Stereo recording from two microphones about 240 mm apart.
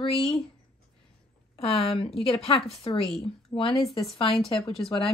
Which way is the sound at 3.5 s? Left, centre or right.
Left.